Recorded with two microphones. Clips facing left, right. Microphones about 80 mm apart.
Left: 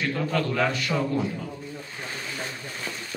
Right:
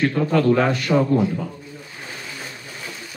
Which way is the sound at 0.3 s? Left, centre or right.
Right.